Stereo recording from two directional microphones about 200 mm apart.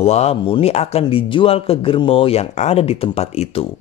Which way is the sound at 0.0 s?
30° left (ahead or behind).